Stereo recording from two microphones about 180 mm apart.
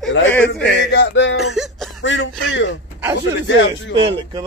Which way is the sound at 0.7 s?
75° left (ahead or behind).